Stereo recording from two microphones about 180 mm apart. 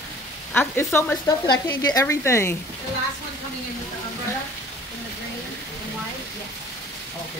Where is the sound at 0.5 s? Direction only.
10° left (ahead or behind).